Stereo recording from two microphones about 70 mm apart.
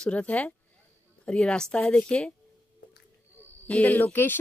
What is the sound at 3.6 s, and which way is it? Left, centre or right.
Speech, left.